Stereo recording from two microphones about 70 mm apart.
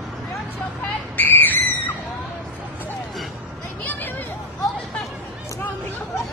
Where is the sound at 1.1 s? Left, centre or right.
Left.